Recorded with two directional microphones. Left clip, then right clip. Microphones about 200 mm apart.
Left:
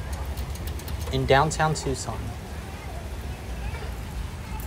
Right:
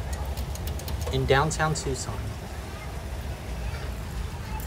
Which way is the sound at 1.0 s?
5° right (ahead or behind).